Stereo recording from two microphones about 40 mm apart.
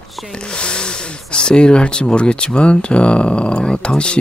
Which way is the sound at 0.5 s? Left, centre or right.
Left.